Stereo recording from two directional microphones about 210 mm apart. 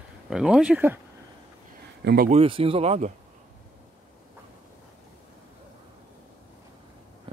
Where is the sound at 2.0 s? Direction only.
45° right (ahead or behind).